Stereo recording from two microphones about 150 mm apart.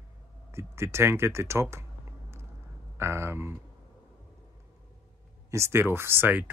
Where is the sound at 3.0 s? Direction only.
15° right (ahead or behind).